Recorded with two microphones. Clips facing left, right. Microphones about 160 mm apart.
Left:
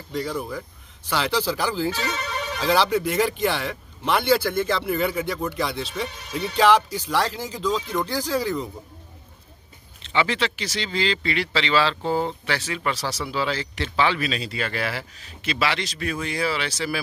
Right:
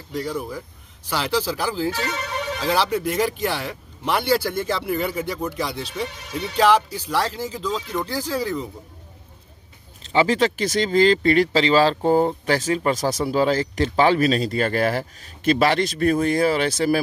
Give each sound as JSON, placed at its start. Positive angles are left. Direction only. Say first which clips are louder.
{"t": 0.1, "sound": "speech", "louder": "right 1 dB", "side_deg": -5}
{"t": 10.0, "sound": "speech", "louder": "right 5 dB", "side_deg": -40}